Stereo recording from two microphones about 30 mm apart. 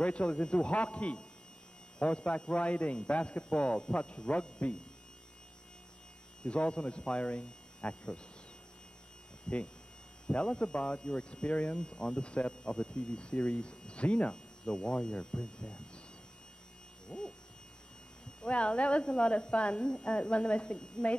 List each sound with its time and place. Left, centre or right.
0.0 s speech: left
6.4 s speech: left
9.5 s speech: left
14.3 s speech: left
17.1 s a sound: left
18.4 s speech: left